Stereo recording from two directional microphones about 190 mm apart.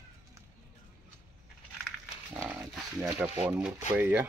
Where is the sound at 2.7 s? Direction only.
10° right (ahead or behind).